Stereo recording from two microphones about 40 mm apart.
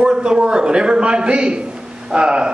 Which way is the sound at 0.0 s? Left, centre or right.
Right.